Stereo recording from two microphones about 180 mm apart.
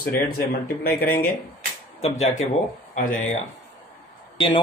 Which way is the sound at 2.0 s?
40° left (ahead or behind).